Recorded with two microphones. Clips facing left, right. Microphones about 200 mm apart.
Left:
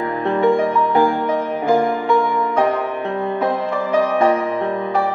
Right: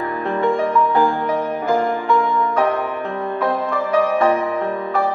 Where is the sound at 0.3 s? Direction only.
15° left (ahead or behind).